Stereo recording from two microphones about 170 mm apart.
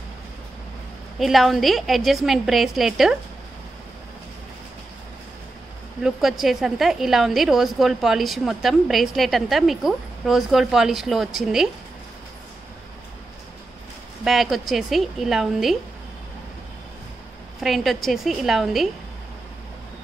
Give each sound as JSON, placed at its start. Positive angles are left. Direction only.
{"t": 1.2, "sound": "a woman's voice", "side_deg": 0}
{"t": 6.0, "sound": "a woman's voice", "side_deg": 0}
{"t": 14.2, "sound": "a woman's voice", "side_deg": 0}
{"t": 17.6, "sound": "a woman's voice", "side_deg": 0}